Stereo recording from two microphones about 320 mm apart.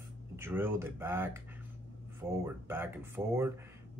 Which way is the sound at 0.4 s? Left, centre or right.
Centre.